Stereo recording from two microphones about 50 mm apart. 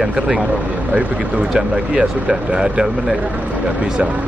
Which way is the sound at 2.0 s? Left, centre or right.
Centre.